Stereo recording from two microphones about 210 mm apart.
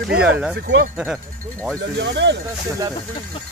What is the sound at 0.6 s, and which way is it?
Speech, 55° right (ahead or behind).